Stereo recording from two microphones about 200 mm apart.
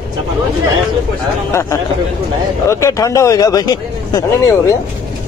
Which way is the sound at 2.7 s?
15° left (ahead or behind).